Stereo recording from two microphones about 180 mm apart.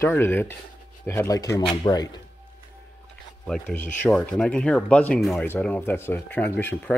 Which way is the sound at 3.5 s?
5° left (ahead or behind).